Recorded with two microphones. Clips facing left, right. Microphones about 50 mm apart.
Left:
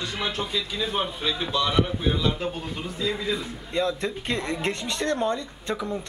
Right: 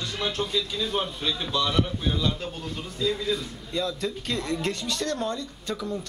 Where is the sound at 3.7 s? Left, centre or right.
Left.